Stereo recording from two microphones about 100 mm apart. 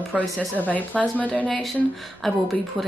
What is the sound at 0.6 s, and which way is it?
A woman's voice, 15° left (ahead or behind).